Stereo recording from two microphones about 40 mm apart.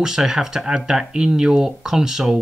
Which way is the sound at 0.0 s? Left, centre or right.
Centre.